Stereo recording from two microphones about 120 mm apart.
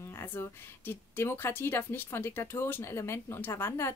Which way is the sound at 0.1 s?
20° left (ahead or behind).